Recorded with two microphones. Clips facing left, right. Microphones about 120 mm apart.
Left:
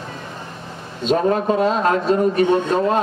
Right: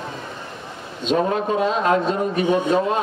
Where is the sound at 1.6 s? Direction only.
40° left (ahead or behind).